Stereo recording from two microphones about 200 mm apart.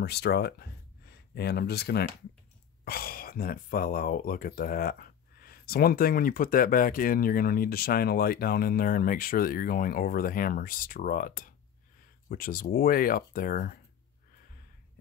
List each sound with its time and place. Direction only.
0.0 s speech: 55° left (ahead or behind)